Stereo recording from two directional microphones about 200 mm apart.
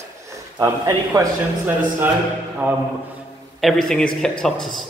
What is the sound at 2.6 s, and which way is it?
Speech, 10° right (ahead or behind).